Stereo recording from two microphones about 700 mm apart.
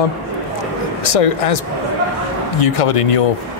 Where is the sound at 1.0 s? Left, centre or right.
Left.